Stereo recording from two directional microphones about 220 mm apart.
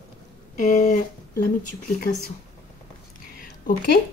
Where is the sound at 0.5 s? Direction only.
35° left (ahead or behind).